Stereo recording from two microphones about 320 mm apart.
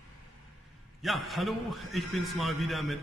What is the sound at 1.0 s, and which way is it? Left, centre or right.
A man's voice, centre.